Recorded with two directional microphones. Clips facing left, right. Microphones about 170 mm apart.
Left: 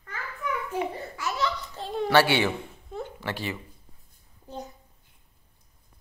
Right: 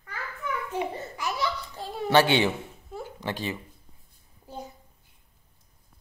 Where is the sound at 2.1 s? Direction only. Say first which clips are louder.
Right 1 dB; 20° right (ahead or behind).